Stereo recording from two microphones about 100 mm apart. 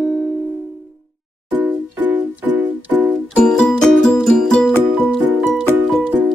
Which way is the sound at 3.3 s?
10° left (ahead or behind).